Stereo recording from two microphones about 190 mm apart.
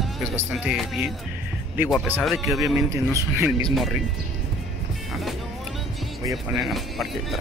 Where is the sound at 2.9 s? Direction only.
15° right (ahead or behind).